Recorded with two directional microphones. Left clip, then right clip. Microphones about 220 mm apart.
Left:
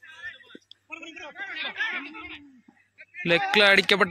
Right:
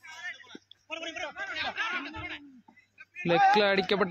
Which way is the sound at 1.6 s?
90° right.